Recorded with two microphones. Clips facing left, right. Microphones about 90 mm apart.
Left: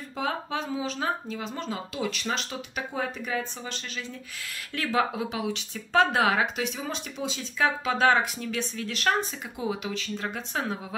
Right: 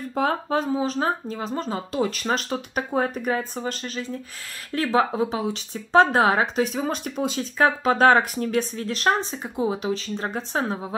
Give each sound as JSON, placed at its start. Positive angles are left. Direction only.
{"t": 0.1, "sound": "speech", "side_deg": -45}